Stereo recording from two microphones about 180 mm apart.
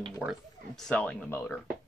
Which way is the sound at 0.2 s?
Centre (ahead or behind).